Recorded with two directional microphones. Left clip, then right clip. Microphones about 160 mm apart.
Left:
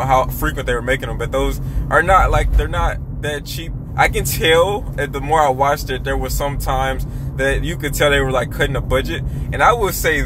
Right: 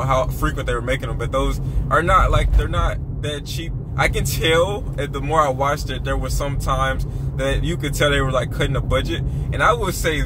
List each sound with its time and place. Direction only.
0.0 s speech: 20° left (ahead or behind)